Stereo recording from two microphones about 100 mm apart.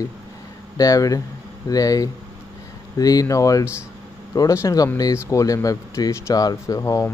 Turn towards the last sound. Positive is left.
turn(degrees=35)  # may be behind; listen again after turning